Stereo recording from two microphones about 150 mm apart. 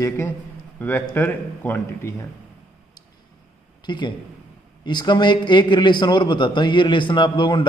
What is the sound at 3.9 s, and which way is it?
A man's voice, 30° left (ahead or behind).